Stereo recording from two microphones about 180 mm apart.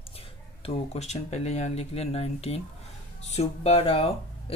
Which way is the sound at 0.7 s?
40° left (ahead or behind).